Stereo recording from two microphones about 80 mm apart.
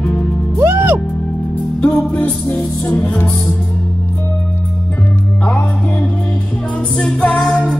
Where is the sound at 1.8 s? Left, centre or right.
Centre.